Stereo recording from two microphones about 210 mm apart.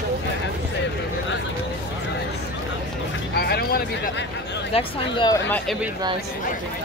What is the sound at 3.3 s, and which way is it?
Vehicle, 50° left (ahead or behind).